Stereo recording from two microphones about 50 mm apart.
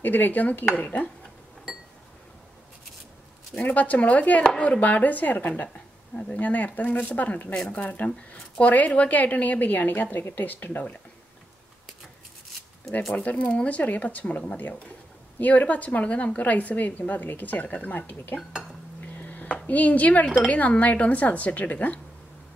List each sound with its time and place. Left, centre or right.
0.0 s a woman's voice: left
3.6 s a woman's voice: left
6.1 s speech: left
6.4 s a woman's voice: left
13.1 s a woman's voice: left